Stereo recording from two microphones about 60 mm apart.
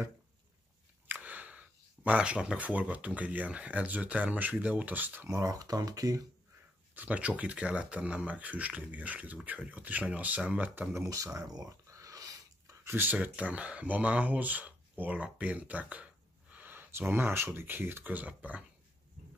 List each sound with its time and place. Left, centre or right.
1.0 s speech: right
5.2 s speech: right
7.0 s speech: right
11.3 s a sound: right
12.8 s speech: right
15.2 s a sound: right
17.6 s speech: right